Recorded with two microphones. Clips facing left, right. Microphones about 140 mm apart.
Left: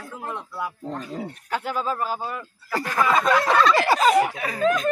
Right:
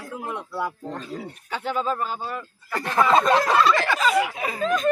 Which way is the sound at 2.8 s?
25° right (ahead or behind).